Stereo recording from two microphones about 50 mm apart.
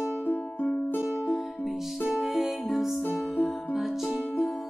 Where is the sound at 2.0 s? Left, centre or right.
Centre.